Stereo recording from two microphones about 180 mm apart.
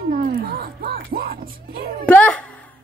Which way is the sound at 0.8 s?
55° right (ahead or behind).